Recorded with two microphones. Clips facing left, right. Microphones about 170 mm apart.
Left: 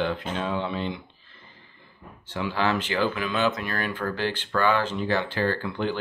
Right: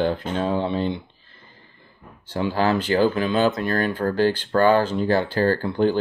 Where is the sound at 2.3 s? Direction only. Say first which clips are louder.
Right 5 dB; 35° right (ahead or behind).